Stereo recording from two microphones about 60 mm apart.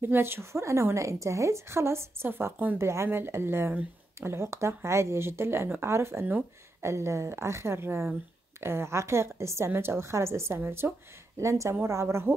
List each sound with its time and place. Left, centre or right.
0.0 s speech: right
2.8 s speech: right
11.3 s a woman's voice: right